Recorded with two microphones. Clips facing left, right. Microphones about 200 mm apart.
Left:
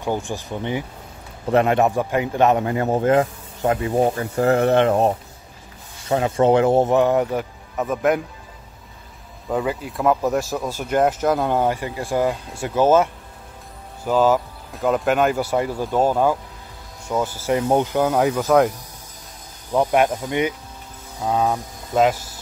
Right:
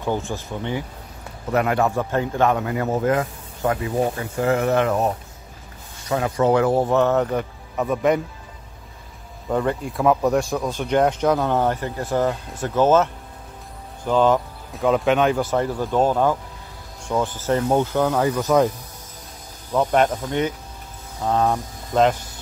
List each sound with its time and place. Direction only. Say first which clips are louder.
0.0 s speech: even; 15° left (ahead or behind)
7.0 s speech: left 1 dB; 10° left (ahead or behind)
9.5 s speech: right 1 dB; 5° left (ahead or behind)
19.7 s speech: left 1 dB; 10° left (ahead or behind)